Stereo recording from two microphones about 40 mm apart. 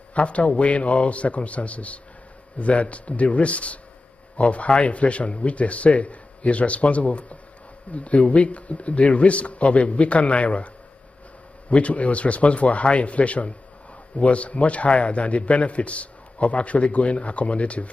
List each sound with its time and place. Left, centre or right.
0.1 s a man's voice: left
11.7 s a man's voice: left